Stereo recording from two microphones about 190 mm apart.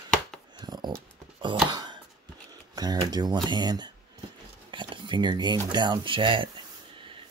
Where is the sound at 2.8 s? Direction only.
20° right (ahead or behind).